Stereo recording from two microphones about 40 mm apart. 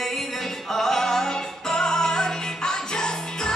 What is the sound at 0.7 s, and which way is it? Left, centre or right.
Music, centre.